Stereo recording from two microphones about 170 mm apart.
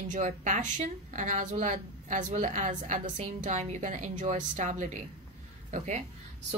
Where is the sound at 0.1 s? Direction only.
45° right (ahead or behind).